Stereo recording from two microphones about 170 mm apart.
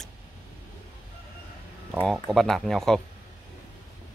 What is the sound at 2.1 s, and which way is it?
Speech, centre (ahead or behind).